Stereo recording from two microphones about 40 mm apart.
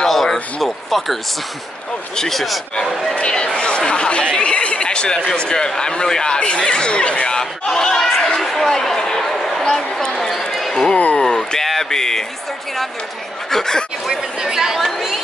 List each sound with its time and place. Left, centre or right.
0.1 s speech: centre
2.1 s speech: centre
3.2 s speech: left
13.5 s speech: centre
14.4 s speech: centre
14.8 s speech: centre